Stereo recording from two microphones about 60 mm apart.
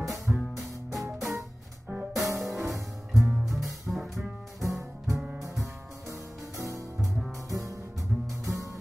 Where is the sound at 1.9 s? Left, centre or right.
Centre.